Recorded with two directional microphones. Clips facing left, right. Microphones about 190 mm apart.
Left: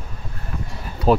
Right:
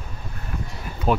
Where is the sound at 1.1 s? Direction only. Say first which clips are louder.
Left 5 dB; 35° left (ahead or behind).